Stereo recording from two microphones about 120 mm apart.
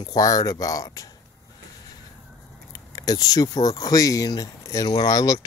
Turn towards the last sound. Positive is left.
turn(degrees=30)  # may be behind; listen again after turning